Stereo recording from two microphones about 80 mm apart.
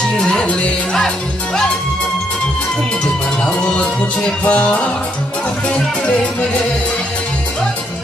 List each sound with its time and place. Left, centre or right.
0.2 s music: centre
3.4 s music: centre